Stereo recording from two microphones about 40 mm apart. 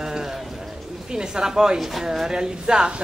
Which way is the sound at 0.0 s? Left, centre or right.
Centre.